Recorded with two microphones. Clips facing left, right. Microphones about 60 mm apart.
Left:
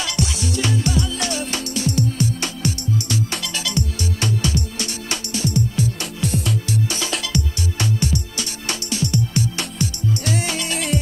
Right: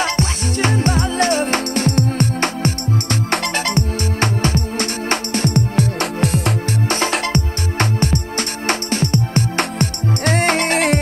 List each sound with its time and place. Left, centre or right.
0.0 s music: right